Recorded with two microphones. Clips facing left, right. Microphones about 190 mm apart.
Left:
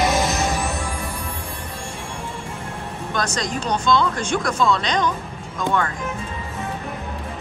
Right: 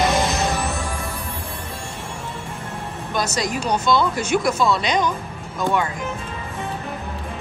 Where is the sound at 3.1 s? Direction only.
5° right (ahead or behind).